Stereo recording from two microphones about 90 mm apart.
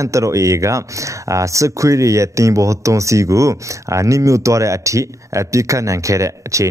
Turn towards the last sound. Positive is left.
turn(degrees=-35)  # may be behind; listen again after turning